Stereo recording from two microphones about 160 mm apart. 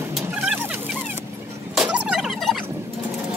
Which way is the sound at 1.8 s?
5° right (ahead or behind).